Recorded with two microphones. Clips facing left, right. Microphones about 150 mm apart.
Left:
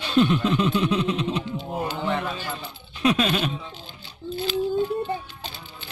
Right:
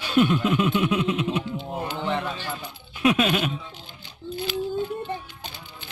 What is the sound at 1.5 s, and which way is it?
Music, 20° right (ahead or behind).